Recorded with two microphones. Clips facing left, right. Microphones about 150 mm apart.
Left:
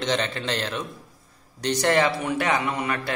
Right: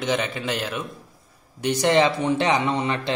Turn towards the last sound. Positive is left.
turn(degrees=-25)  # may be behind; listen again after turning